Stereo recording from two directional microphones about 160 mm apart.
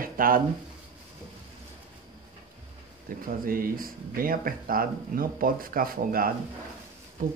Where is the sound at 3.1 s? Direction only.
60° right (ahead or behind).